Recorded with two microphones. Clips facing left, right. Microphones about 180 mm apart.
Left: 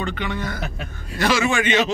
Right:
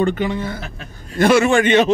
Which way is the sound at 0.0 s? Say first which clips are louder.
Right 9 dB; 45° right (ahead or behind).